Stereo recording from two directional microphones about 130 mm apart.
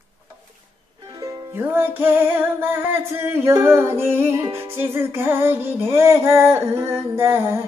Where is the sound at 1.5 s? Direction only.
15° right (ahead or behind).